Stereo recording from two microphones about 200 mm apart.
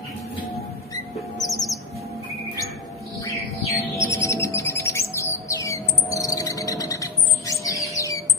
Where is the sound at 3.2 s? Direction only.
15° left (ahead or behind).